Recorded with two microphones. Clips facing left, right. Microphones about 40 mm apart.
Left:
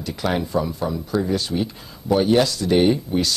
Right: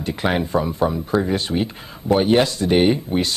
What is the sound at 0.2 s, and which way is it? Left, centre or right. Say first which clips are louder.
Speech: right 2 dB; right.